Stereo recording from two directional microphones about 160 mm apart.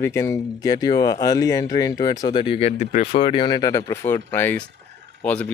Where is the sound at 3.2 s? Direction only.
30° left (ahead or behind); by 5.5 s 10° left (ahead or behind).